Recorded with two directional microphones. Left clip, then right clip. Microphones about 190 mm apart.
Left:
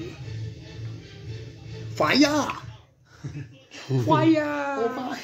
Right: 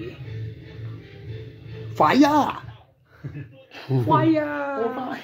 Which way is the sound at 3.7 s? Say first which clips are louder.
Right 2 dB; 35° right (ahead or behind).